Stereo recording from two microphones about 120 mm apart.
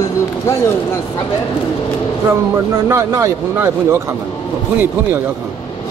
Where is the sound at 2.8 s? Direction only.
25° right (ahead or behind).